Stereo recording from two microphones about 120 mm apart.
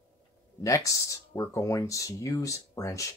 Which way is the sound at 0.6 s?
25° left (ahead or behind).